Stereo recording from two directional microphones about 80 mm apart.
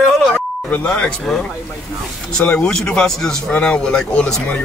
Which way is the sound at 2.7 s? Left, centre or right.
Centre.